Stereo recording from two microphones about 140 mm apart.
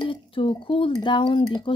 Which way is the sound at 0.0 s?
40° left (ahead or behind).